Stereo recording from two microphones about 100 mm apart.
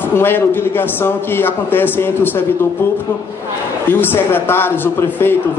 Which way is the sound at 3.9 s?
20° left (ahead or behind).